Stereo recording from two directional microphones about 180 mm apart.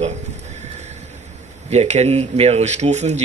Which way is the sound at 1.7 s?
35° right (ahead or behind).